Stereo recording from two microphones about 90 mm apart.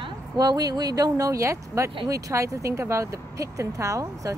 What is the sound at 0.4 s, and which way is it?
Speech, 45° right (ahead or behind).